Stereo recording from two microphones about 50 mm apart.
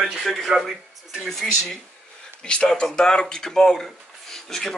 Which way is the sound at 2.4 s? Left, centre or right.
Centre.